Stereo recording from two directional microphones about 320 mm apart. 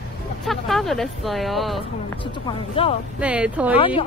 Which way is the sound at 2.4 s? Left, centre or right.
Centre.